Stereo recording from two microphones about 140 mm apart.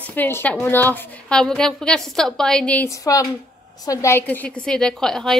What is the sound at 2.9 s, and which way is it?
A woman's voice, 25° left (ahead or behind).